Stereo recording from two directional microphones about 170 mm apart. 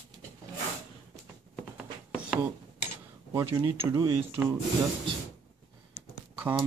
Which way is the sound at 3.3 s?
15° right (ahead or behind).